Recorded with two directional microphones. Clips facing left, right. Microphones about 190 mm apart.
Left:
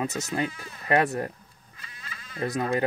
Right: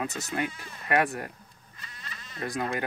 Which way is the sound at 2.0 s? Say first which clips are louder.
Left 4 dB; 5° left (ahead or behind).